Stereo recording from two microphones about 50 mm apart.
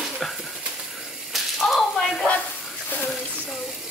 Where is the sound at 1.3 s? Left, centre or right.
Centre.